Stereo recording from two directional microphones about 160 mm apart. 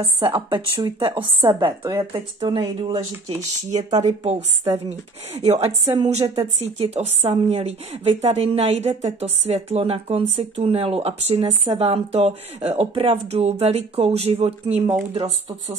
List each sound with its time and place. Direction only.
0.2 s a woman's voice: 30° right (ahead or behind)
4.0 s a woman's voice: 45° right (ahead or behind)
6.2 s a woman's voice: 25° right (ahead or behind)
6.6 s a woman's voice: 40° right (ahead or behind)